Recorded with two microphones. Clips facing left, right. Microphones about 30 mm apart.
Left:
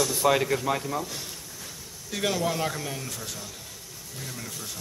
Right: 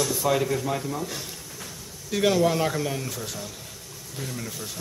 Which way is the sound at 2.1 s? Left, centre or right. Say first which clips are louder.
Right 6 dB; centre.